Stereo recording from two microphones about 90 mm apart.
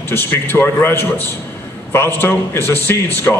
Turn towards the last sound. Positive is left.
turn(degrees=25)  # may be behind; listen again after turning